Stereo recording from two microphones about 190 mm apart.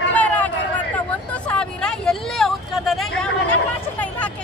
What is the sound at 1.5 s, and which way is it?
Vehicle, 5° left (ahead or behind).